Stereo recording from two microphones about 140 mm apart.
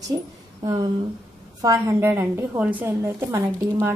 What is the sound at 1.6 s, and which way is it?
A woman's voice, 25° right (ahead or behind).